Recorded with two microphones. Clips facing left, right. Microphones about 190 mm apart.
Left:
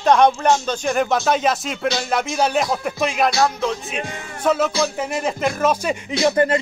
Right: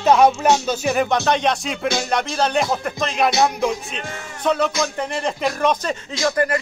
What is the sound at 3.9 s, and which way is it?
Speech, 5° left (ahead or behind).